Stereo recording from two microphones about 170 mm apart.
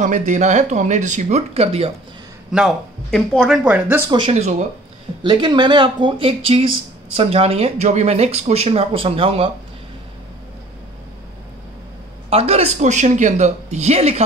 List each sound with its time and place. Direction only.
0.0 s speech: 45° right (ahead or behind)
2.5 s speech: centre (ahead or behind)
4.1 s speech: 35° right (ahead or behind)
5.2 s speech: 25° right (ahead or behind)
12.3 s speech: 35° right (ahead or behind)